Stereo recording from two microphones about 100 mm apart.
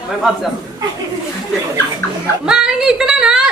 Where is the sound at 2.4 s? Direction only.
5° right (ahead or behind).